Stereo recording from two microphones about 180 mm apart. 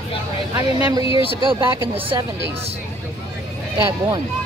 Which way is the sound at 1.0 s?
30° left (ahead or behind).